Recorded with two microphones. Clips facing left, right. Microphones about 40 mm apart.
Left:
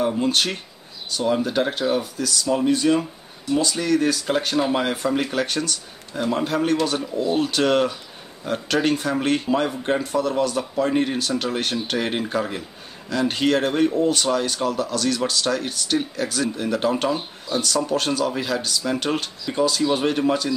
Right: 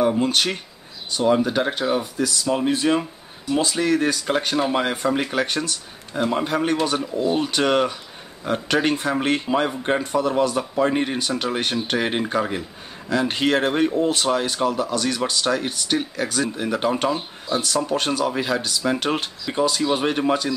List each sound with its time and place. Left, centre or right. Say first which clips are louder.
0.2 s speech: right 1 dB; centre
4.1 s speech: even; centre